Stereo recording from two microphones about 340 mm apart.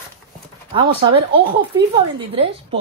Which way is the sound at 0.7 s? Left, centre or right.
Centre.